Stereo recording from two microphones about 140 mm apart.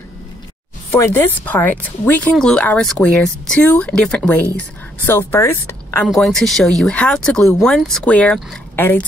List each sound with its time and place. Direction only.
0.9 s speech: 15° left (ahead or behind)
6.0 s speech: centre (ahead or behind)